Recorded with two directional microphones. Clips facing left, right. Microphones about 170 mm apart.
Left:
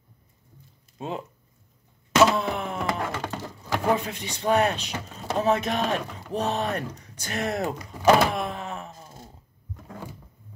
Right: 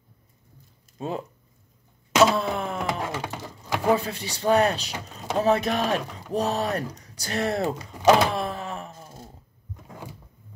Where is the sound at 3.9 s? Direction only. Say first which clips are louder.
Right 2 dB; 35° right (ahead or behind).